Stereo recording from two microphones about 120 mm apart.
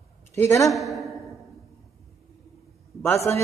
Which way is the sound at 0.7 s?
Centre (ahead or behind).